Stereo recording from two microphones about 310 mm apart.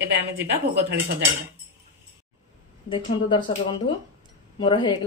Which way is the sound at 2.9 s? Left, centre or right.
Centre.